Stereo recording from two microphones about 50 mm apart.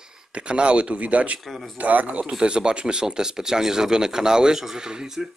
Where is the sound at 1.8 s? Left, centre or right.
Right.